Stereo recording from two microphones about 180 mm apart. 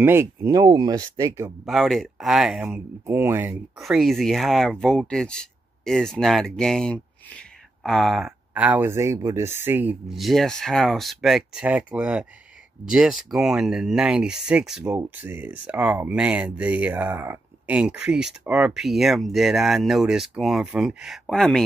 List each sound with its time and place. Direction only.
0.0 s speech: 15° right (ahead or behind)
1.7 s speech: centre (ahead or behind)
3.7 s speech: centre (ahead or behind)